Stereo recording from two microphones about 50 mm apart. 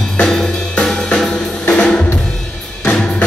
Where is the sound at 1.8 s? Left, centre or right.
Centre.